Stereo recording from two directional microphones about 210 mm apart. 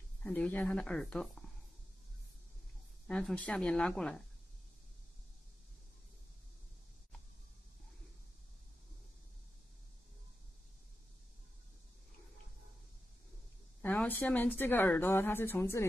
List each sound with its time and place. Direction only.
0.2 s speech: 5° left (ahead or behind)
3.1 s speech: 5° left (ahead or behind)
13.8 s a woman's voice: 10° left (ahead or behind)